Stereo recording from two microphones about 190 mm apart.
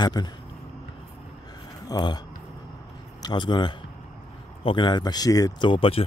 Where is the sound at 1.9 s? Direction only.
25° left (ahead or behind).